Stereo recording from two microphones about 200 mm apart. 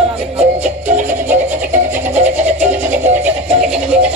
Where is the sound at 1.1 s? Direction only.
10° right (ahead or behind).